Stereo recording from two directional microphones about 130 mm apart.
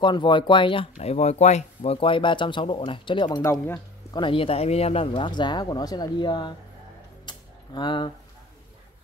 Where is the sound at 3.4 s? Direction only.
20° left (ahead or behind).